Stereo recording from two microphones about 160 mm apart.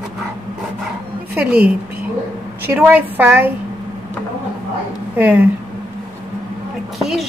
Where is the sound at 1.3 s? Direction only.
10° right (ahead or behind).